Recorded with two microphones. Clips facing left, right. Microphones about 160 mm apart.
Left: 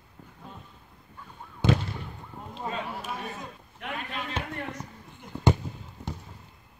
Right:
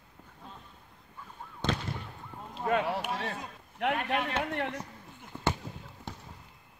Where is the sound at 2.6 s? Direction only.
75° right (ahead or behind).